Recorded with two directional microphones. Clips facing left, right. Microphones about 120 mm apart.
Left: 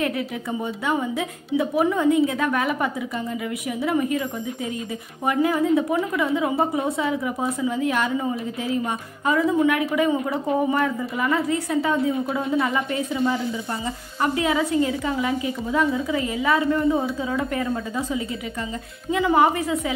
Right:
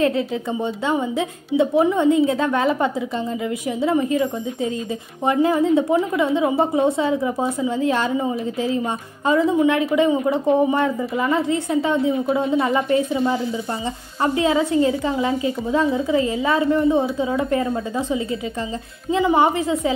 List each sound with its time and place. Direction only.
0.8 s a woman's voice: 25° right (ahead or behind)